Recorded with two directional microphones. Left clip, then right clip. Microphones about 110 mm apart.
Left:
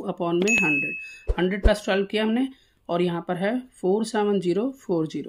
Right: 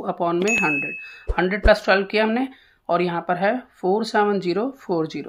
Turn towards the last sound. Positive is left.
turn(degrees=40)  # may be behind; listen again after turning